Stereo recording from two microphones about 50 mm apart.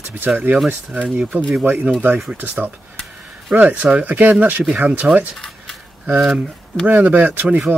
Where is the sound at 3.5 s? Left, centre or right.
Right.